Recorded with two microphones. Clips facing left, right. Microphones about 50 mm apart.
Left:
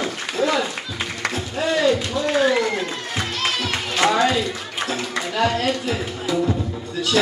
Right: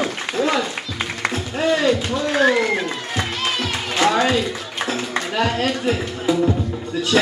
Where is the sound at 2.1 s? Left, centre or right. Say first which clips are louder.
Right 1 dB; right.